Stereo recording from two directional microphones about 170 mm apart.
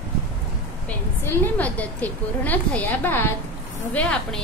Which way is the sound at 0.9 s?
10° left (ahead or behind).